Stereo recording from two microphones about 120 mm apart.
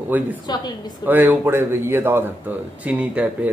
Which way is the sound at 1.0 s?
15° right (ahead or behind).